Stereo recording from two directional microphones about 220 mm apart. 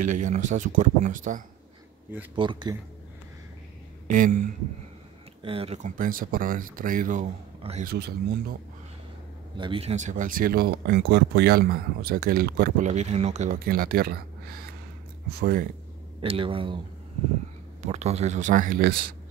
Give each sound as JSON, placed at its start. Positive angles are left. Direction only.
{"t": 0.0, "sound": "speech", "side_deg": -35}
{"t": 2.3, "sound": "speech", "side_deg": -20}
{"t": 4.1, "sound": "speech", "side_deg": -35}
{"t": 5.4, "sound": "speech", "side_deg": -25}
{"t": 7.9, "sound": "speech", "side_deg": -45}
{"t": 9.6, "sound": "speech", "side_deg": -25}
{"t": 16.2, "sound": "speech", "side_deg": -25}
{"t": 17.8, "sound": "speech", "side_deg": -30}